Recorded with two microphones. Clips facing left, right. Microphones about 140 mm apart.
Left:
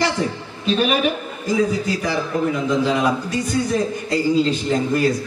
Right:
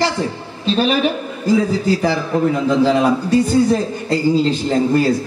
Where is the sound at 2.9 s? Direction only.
30° right (ahead or behind).